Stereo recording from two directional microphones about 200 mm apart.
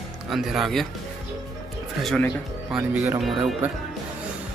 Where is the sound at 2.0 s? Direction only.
5° left (ahead or behind).